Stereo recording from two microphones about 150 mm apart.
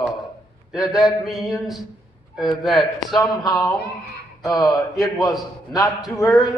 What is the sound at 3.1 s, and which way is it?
A man's voice, 25° left (ahead or behind).